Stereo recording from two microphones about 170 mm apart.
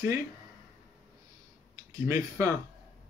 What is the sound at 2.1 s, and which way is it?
Speech, 20° right (ahead or behind).